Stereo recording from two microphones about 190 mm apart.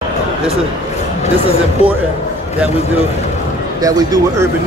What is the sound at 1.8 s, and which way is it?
Speech, 30° right (ahead or behind).